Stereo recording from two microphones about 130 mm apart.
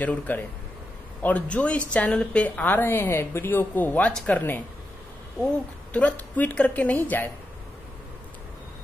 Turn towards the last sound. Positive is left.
turn(degrees=15)  # may be behind; listen again after turning